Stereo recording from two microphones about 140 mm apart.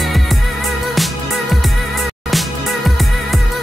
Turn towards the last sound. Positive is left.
turn(degrees=0)  # may be behind; listen again after turning